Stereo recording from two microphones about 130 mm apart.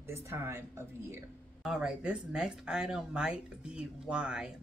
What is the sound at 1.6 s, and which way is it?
Speech, 5° right (ahead or behind).